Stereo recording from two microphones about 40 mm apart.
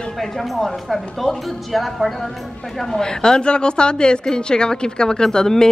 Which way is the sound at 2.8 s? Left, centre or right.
Centre.